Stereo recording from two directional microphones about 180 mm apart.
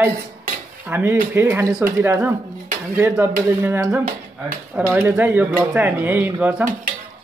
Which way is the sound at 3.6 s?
10° right (ahead or behind).